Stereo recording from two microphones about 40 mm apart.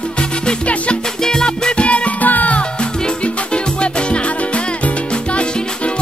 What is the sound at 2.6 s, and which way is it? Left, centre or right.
Music, left.